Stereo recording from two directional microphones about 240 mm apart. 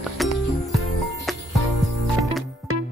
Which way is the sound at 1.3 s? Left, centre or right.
Centre.